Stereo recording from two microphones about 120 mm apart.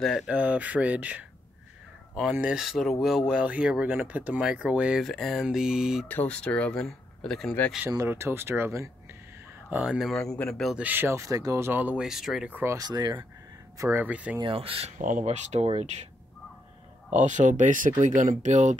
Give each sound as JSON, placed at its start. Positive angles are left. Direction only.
{"t": 0.3, "sound": "speech", "side_deg": -15}
{"t": 2.3, "sound": "speech", "side_deg": -10}
{"t": 2.6, "sound": "speech", "side_deg": 0}
{"t": 5.0, "sound": "speech", "side_deg": 5}
{"t": 6.0, "sound": "speech", "side_deg": 10}
{"t": 8.1, "sound": "speech", "side_deg": -20}
{"t": 9.7, "sound": "speech", "side_deg": -10}
{"t": 10.8, "sound": "speech", "side_deg": -15}
{"t": 12.4, "sound": "speech", "side_deg": -15}
{"t": 12.7, "sound": "speech", "side_deg": -35}
{"t": 13.7, "sound": "speech", "side_deg": -20}
{"t": 14.4, "sound": "speech", "side_deg": -50}
{"t": 15.0, "sound": "speech", "side_deg": -90}
{"t": 17.2, "sound": "speech", "side_deg": -90}